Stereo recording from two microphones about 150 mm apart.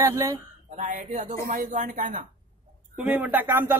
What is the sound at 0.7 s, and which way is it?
Speech, 60° right (ahead or behind).